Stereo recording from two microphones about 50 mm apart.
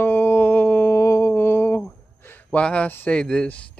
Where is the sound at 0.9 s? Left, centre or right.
Left.